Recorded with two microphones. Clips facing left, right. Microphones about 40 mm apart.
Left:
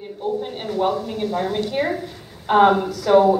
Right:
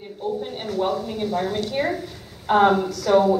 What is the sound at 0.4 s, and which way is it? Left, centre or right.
A woman's voice, centre.